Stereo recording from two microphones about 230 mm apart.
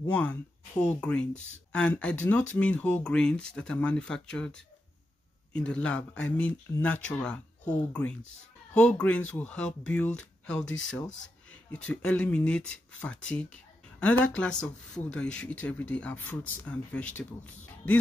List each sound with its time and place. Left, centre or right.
0.1 s speech: centre
11.7 s speech: centre